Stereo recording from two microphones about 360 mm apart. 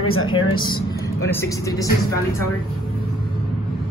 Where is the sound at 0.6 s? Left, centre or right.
Centre.